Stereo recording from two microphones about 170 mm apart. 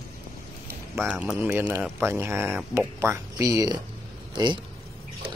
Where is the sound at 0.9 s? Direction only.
10° right (ahead or behind); by 4.6 s 25° right (ahead or behind).